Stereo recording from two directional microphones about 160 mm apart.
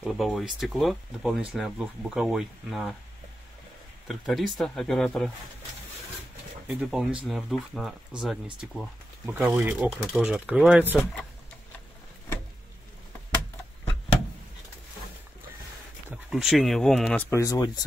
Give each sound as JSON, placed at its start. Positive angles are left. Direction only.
{"t": 0.0, "sound": "speech", "side_deg": 0}
{"t": 4.1, "sound": "speech", "side_deg": 0}
{"t": 6.7, "sound": "speech", "side_deg": -5}
{"t": 9.8, "sound": "speech", "side_deg": -5}
{"t": 16.1, "sound": "speech", "side_deg": -5}
{"t": 17.3, "sound": "speech", "side_deg": 20}